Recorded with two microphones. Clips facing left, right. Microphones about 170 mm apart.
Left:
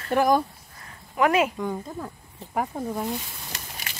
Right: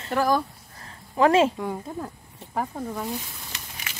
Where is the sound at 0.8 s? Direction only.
30° right (ahead or behind).